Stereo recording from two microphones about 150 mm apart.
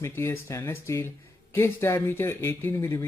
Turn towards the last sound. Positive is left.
turn(degrees=15)  # may be behind; listen again after turning